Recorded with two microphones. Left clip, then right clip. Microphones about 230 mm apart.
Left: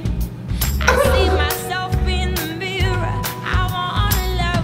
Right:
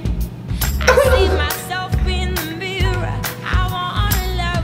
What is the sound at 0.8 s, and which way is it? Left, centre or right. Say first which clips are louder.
Music: right 3 dB; centre.